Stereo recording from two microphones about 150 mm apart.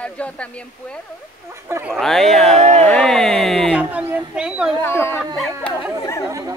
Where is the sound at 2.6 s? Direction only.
45° right (ahead or behind).